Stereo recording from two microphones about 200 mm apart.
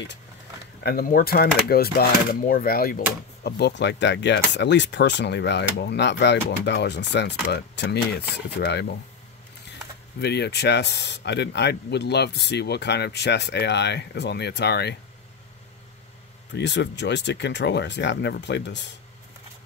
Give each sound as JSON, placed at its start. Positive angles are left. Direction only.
{"t": 0.8, "sound": "speech", "side_deg": 45}
{"t": 10.2, "sound": "speech", "side_deg": 55}
{"t": 16.5, "sound": "speech", "side_deg": 60}